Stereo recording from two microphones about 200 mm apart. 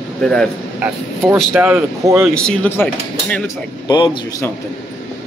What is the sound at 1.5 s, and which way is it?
Speech, 10° right (ahead or behind).